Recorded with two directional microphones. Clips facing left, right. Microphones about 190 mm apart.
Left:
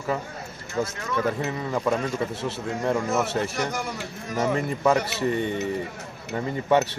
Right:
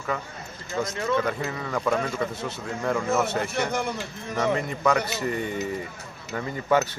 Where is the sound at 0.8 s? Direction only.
25° left (ahead or behind).